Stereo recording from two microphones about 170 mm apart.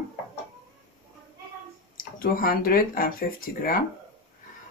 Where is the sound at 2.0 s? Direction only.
55° left (ahead or behind).